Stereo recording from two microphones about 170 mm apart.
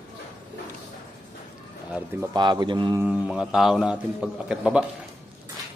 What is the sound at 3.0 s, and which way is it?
A man's voice, 5° right (ahead or behind).